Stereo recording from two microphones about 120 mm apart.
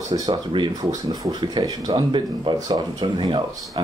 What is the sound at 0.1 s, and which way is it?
Speech, 35° right (ahead or behind).